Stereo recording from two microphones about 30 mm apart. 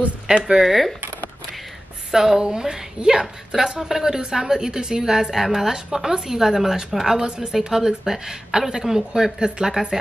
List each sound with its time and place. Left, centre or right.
0.4 s speech: centre
0.7 s speech: centre
2.0 s a woman's voice: centre